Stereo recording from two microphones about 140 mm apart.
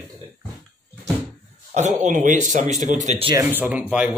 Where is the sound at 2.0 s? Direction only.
65° right (ahead or behind).